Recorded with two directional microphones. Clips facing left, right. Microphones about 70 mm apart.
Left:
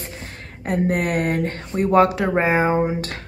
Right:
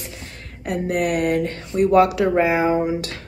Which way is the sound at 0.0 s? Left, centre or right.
Left.